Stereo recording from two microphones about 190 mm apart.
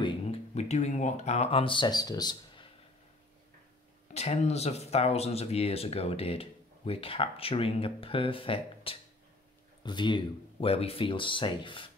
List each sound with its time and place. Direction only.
0.0 s speech: 35° left (ahead or behind)
4.1 s speech: 35° left (ahead or behind)